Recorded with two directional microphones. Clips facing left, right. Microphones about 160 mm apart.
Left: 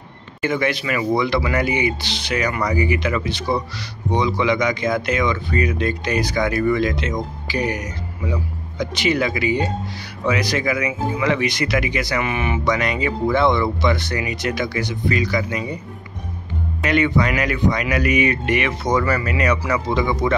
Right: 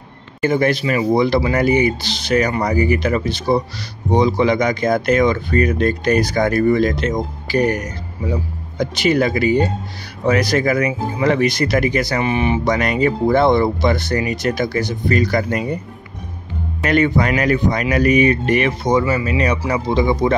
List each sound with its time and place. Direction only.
0.4 s speech: 40° right (ahead or behind)
12.2 s speech: 30° right (ahead or behind)
12.6 s speech: 45° right (ahead or behind)
16.8 s speech: 45° right (ahead or behind)